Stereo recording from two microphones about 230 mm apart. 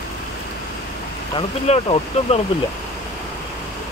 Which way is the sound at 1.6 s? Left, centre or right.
Left.